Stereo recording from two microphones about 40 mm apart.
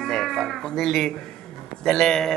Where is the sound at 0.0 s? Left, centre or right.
Centre.